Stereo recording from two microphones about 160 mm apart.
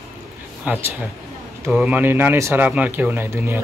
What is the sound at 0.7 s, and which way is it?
A man's voice, 10° right (ahead or behind).